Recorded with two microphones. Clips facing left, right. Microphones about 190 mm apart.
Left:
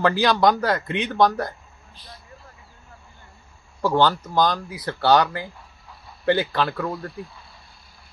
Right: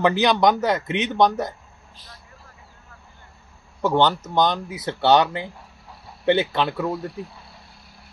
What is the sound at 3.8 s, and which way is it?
Speech, 20° right (ahead or behind).